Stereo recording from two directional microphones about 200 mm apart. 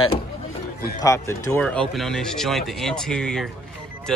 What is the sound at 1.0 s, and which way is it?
Speech, 15° left (ahead or behind).